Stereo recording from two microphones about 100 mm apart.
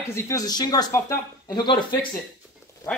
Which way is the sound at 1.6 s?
50° left (ahead or behind).